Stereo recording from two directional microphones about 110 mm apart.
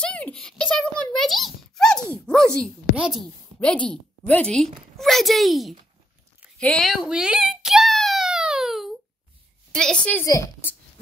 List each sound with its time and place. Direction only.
0.0 s a sound: 10° left (ahead or behind)
3.0 s speech: centre (ahead or behind)
3.5 s a woman's voice: 10° left (ahead or behind)
6.9 s a sound: 5° right (ahead or behind)
9.7 s a woman's voice: 5° left (ahead or behind)
10.2 s a woman's voice: 30° left (ahead or behind)